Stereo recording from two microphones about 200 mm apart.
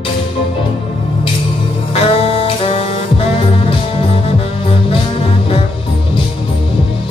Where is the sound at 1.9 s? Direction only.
30° left (ahead or behind).